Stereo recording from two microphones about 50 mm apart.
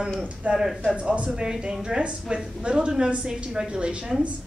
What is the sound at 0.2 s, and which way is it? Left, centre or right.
A woman's voice, right.